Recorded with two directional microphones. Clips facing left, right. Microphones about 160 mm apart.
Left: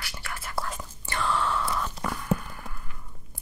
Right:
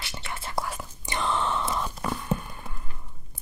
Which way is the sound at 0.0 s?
25° right (ahead or behind).